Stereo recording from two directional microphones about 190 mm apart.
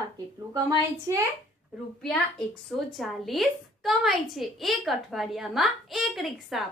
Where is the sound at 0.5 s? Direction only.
20° right (ahead or behind).